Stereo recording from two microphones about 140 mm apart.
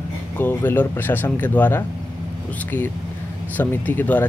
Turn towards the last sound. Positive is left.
turn(degrees=10)  # may be behind; listen again after turning